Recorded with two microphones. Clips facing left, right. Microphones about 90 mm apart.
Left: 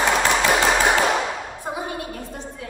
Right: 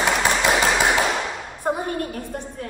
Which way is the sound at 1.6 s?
55° right (ahead or behind).